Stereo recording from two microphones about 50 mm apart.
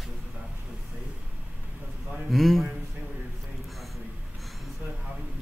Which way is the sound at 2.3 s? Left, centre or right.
Centre.